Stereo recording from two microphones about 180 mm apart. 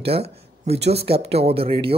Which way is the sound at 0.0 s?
35° right (ahead or behind).